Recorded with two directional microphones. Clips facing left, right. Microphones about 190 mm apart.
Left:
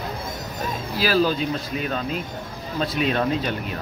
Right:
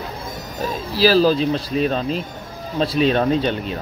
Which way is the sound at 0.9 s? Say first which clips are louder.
Right 6 dB; 35° right (ahead or behind).